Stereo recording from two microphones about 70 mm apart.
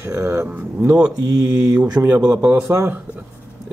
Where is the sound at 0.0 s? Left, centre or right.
Right.